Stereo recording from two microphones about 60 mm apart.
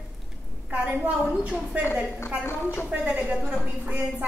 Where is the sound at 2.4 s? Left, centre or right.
Left.